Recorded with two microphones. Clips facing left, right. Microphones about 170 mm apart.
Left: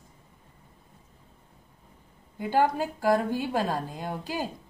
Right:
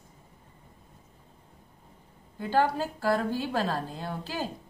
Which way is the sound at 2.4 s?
15° left (ahead or behind).